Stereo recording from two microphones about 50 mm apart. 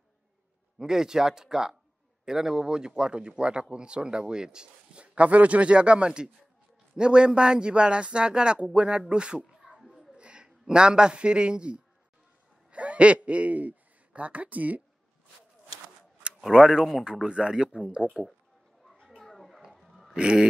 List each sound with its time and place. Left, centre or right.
0.7 s speech: centre
9.5 s a sound: centre
10.1 s a man's voice: centre
16.4 s speech: centre
17.0 s speech: centre
19.0 s children playing: centre
19.6 s a sound: centre
20.2 s speech: centre